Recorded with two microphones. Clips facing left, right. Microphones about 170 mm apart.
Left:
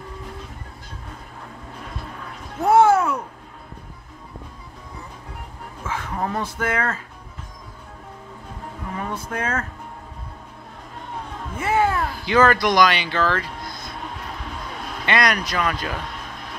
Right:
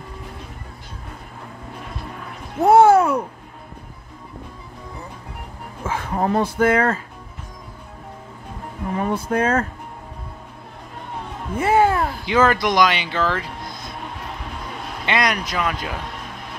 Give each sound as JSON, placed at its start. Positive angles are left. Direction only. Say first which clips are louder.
{"t": 2.6, "sound": "a sound", "louder": "right 3 dB", "side_deg": -30}
{"t": 5.9, "sound": "speech", "louder": "right 5 dB", "side_deg": -30}
{"t": 8.9, "sound": "speech", "louder": "right 8 dB", "side_deg": -30}
{"t": 11.5, "sound": "a sound", "louder": "right 4 dB", "side_deg": -30}
{"t": 12.3, "sound": "speech", "louder": "left 1 dB", "side_deg": -10}
{"t": 12.7, "sound": "speech", "louder": "even", "side_deg": -20}
{"t": 15.0, "sound": "speech", "louder": "even", "side_deg": -15}